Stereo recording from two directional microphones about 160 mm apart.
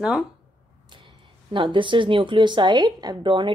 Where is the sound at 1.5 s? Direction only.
30° right (ahead or behind).